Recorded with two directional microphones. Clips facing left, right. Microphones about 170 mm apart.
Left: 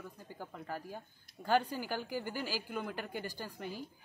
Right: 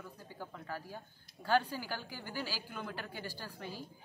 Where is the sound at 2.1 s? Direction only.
50° left (ahead or behind).